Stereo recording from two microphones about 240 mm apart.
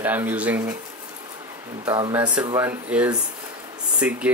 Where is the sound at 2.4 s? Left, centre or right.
Centre.